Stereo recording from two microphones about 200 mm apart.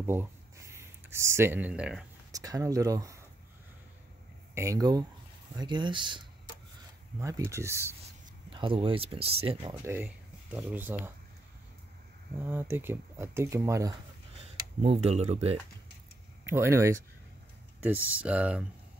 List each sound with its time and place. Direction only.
0.0 s a sound: 10° right (ahead or behind)
2.3 s speech: 15° right (ahead or behind)
4.6 s speech: 15° right (ahead or behind)
8.5 s speech: 25° right (ahead or behind)
9.8 s speech: 10° right (ahead or behind)
12.4 s speech: 10° right (ahead or behind)
14.8 s speech: 30° right (ahead or behind)
16.4 s speech: 10° right (ahead or behind)